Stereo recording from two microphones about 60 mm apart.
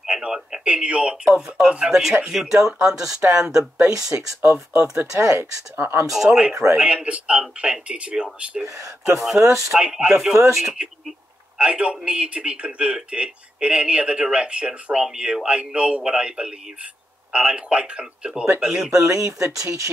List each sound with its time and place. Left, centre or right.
0.0 s speech: centre
3.9 s speech: right
5.4 s speech: right
6.0 s speech: centre
8.6 s speech: right
9.7 s speech: centre
11.5 s a man's voice: centre
19.0 s speech: right